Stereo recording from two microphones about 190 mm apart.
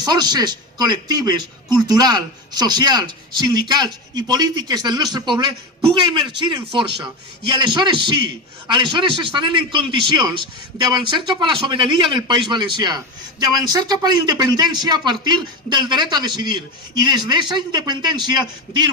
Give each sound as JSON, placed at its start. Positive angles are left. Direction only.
{"t": 0.0, "sound": "a man's voice", "side_deg": -20}